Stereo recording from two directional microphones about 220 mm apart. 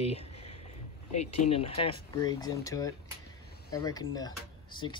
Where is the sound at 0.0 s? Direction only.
30° left (ahead or behind).